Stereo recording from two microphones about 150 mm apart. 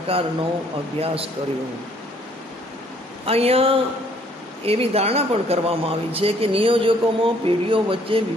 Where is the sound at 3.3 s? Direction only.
40° right (ahead or behind).